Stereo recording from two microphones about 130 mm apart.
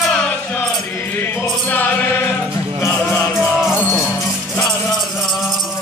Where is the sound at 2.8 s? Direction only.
20° left (ahead or behind).